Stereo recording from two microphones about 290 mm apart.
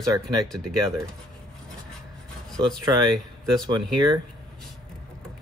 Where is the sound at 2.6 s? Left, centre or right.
Centre.